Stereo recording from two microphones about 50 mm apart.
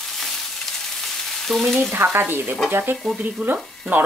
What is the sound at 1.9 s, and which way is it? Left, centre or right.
Speech, right.